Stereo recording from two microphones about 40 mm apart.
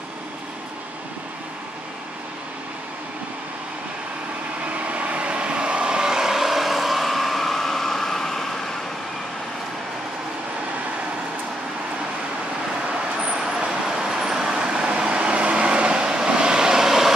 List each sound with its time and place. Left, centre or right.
4.7 s vehicle: right; by 8.5 s centre
13.2 s vehicle: centre